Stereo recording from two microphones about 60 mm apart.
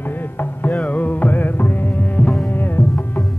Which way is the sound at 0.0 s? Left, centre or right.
Left.